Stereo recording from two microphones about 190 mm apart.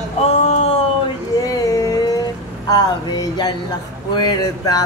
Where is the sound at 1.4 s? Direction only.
20° left (ahead or behind).